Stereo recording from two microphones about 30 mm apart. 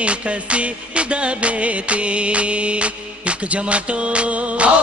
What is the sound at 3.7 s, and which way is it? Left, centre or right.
Music, right.